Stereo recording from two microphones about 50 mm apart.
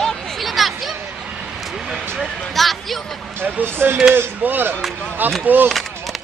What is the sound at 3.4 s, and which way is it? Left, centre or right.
Speech, right.